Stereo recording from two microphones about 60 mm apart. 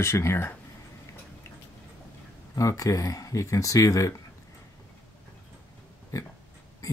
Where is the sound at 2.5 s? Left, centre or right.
Left.